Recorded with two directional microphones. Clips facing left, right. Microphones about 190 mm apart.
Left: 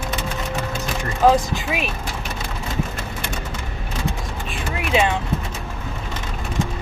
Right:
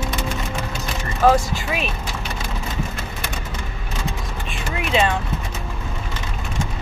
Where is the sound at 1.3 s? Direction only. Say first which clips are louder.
Even; 15° left (ahead or behind).